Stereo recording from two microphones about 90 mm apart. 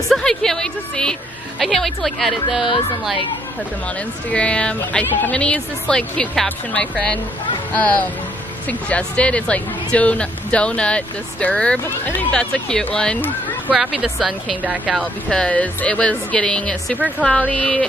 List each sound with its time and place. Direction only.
0.1 s a woman's voice: 5° left (ahead or behind)
4.3 s speech: 10° left (ahead or behind)
13.7 s a woman's voice: 5° right (ahead or behind)
15.2 s speech: 10° left (ahead or behind)